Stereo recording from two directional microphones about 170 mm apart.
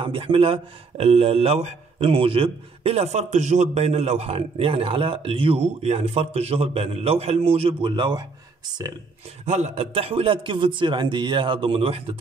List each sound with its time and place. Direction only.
0.0 s speech: 30° right (ahead or behind)
9.5 s speech: 40° right (ahead or behind)